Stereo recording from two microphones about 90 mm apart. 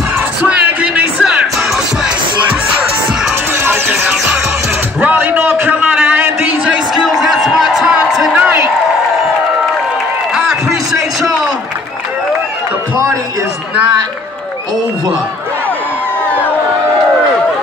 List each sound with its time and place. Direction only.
0.5 s music: 10° right (ahead or behind)
3.5 s music: 30° right (ahead or behind)
5.0 s a sound: 20° right (ahead or behind)
10.3 s music: 5° right (ahead or behind)